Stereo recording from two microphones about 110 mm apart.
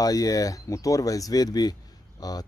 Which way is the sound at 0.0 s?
35° left (ahead or behind).